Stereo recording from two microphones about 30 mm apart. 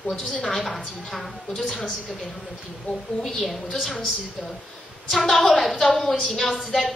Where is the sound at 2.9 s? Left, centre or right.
Left.